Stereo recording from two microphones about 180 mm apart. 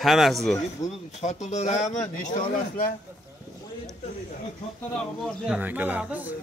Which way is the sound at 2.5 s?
55° left (ahead or behind).